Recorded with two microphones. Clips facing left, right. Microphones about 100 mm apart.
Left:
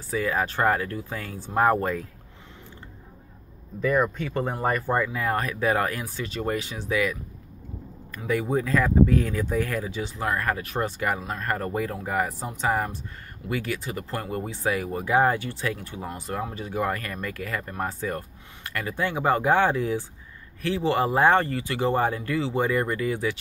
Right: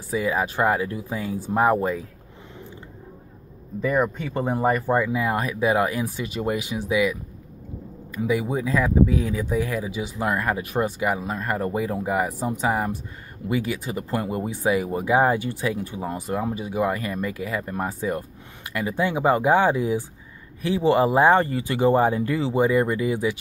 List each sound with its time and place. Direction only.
0.1 s speech: 15° right (ahead or behind)
3.8 s speech: 10° right (ahead or behind)
8.3 s speech: 10° right (ahead or behind)